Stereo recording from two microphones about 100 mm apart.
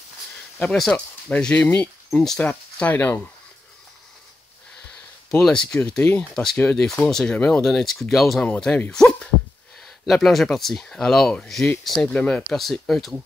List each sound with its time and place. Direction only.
0.7 s speech: 5° left (ahead or behind)
4.8 s a sound: 10° left (ahead or behind)
6.1 s speech: 10° left (ahead or behind)
7.6 s speech: 5° left (ahead or behind)
8.9 s a sound: 5° left (ahead or behind)
9.8 s speech: 5° left (ahead or behind)
12.5 s speech: centre (ahead or behind)